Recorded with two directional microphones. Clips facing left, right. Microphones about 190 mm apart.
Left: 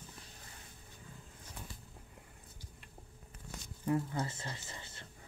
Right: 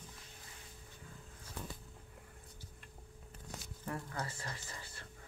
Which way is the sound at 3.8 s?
20° left (ahead or behind).